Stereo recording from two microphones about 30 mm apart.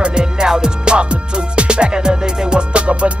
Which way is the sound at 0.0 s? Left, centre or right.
Right.